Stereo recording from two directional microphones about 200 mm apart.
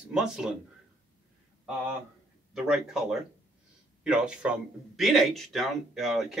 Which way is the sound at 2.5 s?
5° right (ahead or behind).